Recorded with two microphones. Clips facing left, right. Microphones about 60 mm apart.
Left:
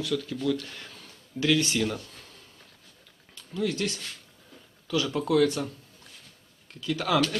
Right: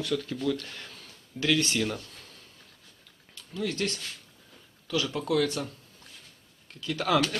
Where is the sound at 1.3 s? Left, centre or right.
Centre.